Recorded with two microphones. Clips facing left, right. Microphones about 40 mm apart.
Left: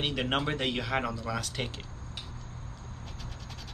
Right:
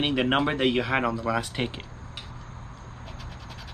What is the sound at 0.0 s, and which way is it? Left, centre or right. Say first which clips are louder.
Speech: right 6 dB; centre.